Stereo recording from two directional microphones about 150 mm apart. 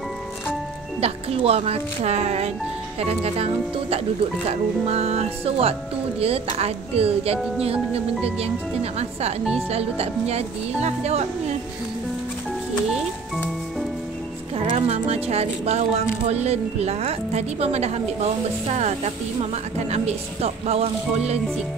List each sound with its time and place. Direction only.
1.0 s speech: 40° right (ahead or behind)
14.6 s speech: 40° right (ahead or behind)